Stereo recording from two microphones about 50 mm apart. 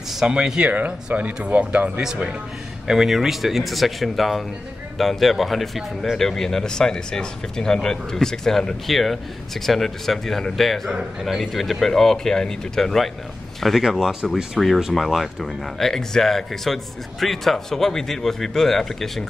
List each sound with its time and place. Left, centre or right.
0.3 s speech: centre
0.7 s speech: right
2.9 s speech: centre
13.8 s speech: centre